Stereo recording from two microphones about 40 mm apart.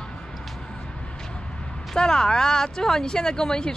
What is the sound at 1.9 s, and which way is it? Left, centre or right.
Speech, centre.